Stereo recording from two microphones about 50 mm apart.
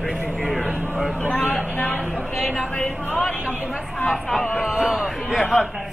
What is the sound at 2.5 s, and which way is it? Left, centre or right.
Speech, centre.